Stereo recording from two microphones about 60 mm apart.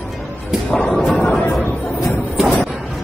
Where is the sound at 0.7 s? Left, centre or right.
Centre.